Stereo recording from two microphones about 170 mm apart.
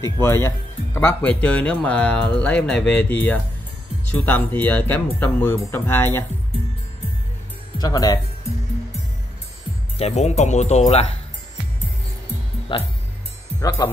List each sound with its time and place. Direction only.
0.0 s speech: 15° left (ahead or behind)
7.8 s speech: 20° left (ahead or behind)
9.9 s speech: 40° left (ahead or behind)
12.7 s speech: 30° left (ahead or behind)